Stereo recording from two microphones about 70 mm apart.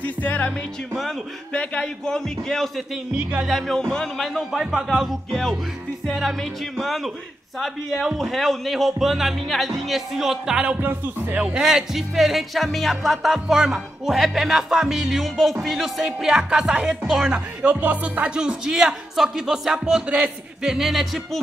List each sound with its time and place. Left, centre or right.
0.0 s music: left
1.5 s a man's voice: centre
3.1 s speech: centre
3.4 s music: centre
6.8 s music: centre
10.8 s speech: right
11.6 s music: centre
17.3 s speech: centre
20.1 s speech: centre
20.7 s music: centre